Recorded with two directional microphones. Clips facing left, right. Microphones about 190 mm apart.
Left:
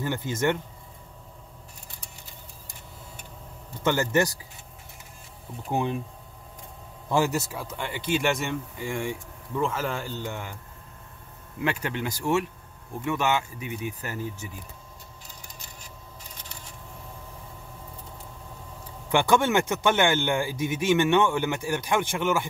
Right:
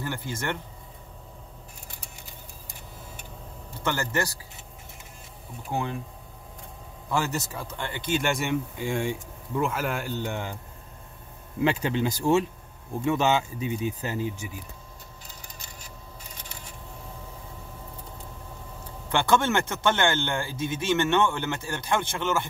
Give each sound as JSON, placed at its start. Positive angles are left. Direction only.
{"t": 0.0, "sound": "speech", "side_deg": 20}
{"t": 3.8, "sound": "speech", "side_deg": 20}
{"t": 5.7, "sound": "speech", "side_deg": 15}
{"t": 7.1, "sound": "speech", "side_deg": 15}
{"t": 8.7, "sound": "speech", "side_deg": -20}
{"t": 9.6, "sound": "speech", "side_deg": -10}
{"t": 10.2, "sound": "speech", "side_deg": -20}
{"t": 11.6, "sound": "speech", "side_deg": -25}
{"t": 19.1, "sound": "speech", "side_deg": 15}